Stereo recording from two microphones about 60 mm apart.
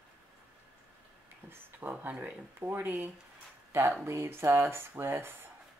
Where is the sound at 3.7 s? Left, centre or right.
Right.